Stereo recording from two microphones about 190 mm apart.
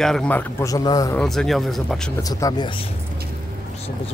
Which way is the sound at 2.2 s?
20° left (ahead or behind).